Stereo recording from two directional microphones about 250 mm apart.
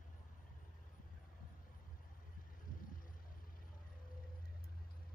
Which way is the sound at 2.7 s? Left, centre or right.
Left.